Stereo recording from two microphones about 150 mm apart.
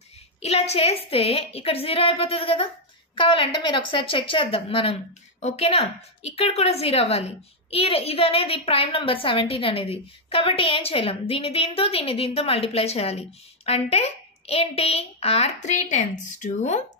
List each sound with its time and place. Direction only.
0.4 s a woman's voice: 45° left (ahead or behind)